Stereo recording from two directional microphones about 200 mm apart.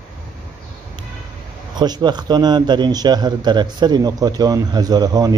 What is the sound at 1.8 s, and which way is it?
Speech, 20° right (ahead or behind).